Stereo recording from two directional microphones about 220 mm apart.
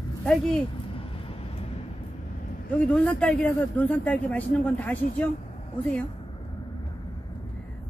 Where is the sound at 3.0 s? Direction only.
5° left (ahead or behind).